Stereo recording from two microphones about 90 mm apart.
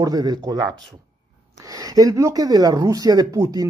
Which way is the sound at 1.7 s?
40° right (ahead or behind).